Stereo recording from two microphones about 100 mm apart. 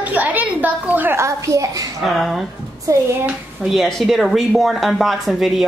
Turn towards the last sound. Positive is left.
turn(degrees=0)  # may be behind; listen again after turning